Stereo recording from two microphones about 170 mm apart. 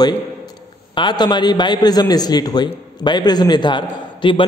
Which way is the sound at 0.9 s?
25° left (ahead or behind).